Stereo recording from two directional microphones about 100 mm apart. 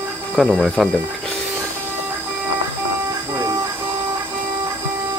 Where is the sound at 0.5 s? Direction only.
5° right (ahead or behind).